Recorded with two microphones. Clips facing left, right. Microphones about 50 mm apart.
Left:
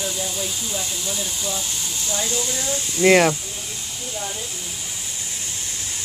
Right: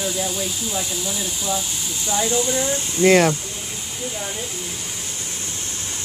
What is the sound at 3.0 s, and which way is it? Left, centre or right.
Speech, centre.